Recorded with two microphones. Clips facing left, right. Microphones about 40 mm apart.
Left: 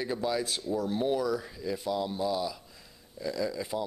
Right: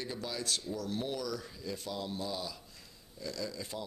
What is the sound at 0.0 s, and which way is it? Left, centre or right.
A man's voice, centre.